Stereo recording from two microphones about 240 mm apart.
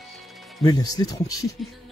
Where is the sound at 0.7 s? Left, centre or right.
Centre.